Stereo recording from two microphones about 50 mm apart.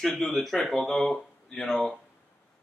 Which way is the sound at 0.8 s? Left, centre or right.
Centre.